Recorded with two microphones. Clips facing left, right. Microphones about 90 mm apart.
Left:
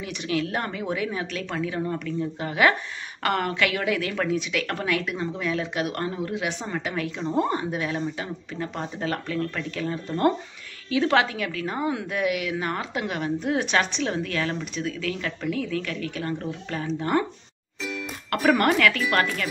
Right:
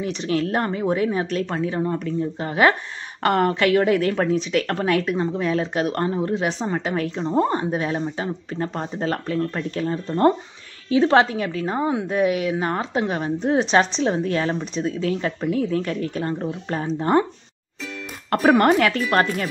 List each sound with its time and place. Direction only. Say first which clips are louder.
0.0 s a woman's voice: right 5 dB; 35° right (ahead or behind)
18.3 s a woman's voice: right 5 dB; 30° right (ahead or behind)